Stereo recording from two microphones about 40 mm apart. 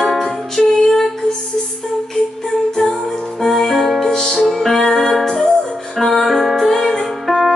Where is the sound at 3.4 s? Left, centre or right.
Centre.